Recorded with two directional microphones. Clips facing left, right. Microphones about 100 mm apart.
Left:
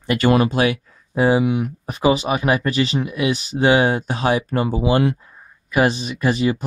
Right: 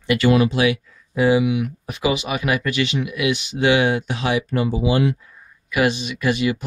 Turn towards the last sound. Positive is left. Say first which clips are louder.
# left 1 dB
turn(degrees=35)  # may be behind; listen again after turning